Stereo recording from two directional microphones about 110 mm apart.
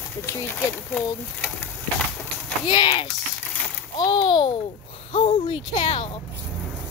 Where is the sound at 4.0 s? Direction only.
45° left (ahead or behind).